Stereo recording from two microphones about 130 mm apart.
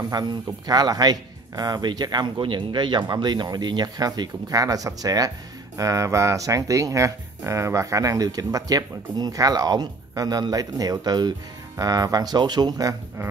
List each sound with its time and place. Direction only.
0.1 s speech: 30° right (ahead or behind)